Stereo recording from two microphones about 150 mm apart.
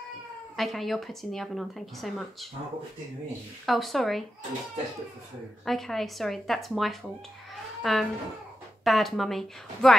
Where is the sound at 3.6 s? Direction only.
Centre (ahead or behind).